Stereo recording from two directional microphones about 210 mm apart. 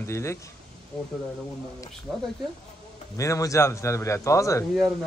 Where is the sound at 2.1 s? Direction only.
Centre (ahead or behind).